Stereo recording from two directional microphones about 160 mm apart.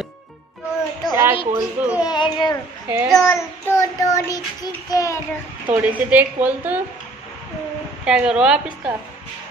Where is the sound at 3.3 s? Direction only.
20° left (ahead or behind).